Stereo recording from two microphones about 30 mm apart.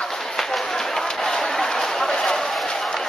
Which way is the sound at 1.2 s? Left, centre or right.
Centre.